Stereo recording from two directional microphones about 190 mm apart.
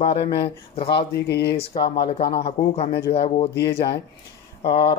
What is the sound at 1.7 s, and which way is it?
Speech, 25° left (ahead or behind).